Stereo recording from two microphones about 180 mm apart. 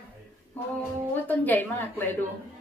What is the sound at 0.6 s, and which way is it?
A woman's voice, 10° left (ahead or behind).